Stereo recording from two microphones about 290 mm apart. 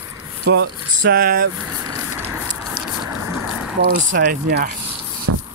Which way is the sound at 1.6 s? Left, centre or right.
Centre.